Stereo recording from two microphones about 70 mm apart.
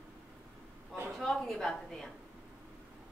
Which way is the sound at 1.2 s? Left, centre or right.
Centre.